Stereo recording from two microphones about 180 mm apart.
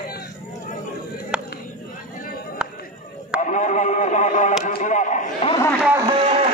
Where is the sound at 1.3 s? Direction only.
5° right (ahead or behind).